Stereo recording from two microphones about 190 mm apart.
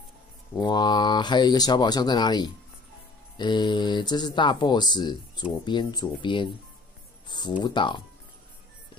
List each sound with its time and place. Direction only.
0.6 s speech: 25° left (ahead or behind)